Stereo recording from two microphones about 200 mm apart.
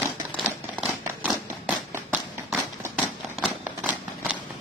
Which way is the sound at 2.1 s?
5° right (ahead or behind).